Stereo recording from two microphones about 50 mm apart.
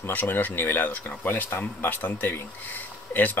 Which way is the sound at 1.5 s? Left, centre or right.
Left.